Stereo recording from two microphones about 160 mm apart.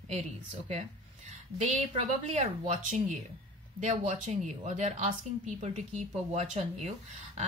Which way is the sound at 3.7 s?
50° right (ahead or behind).